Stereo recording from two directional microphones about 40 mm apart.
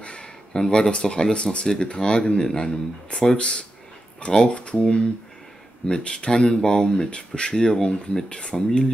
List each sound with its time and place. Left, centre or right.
0.0 s speech: left